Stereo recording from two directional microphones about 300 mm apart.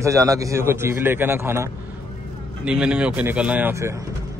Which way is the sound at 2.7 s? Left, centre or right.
Centre.